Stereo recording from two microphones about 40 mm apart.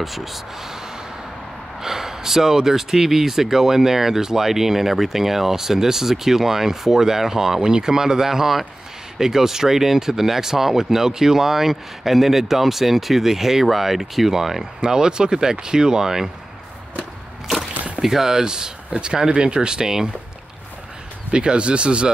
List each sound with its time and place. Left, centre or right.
0.0 s speech: centre
1.8 s speech: centre
14.8 s speech: centre
18.0 s speech: centre
21.3 s speech: right